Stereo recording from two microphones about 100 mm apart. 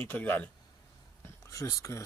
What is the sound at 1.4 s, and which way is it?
Speech, 30° left (ahead or behind).